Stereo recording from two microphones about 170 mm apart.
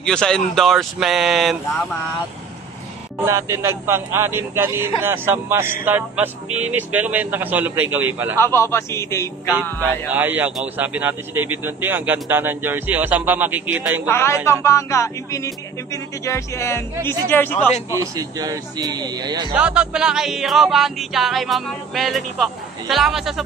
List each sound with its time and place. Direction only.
0.0 s music: 5° left (ahead or behind)
3.3 s speech: 15° right (ahead or behind)
8.4 s music: 15° left (ahead or behind)
9.6 s speech: 10° right (ahead or behind)
14.0 s music: 15° left (ahead or behind)
17.9 s speech: 20° right (ahead or behind)
19.5 s music: 5° right (ahead or behind)